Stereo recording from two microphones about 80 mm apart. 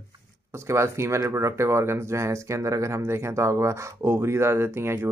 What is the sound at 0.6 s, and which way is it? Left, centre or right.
Speech, right.